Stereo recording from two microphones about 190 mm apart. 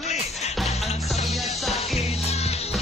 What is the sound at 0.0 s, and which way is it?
Music, 35° left (ahead or behind).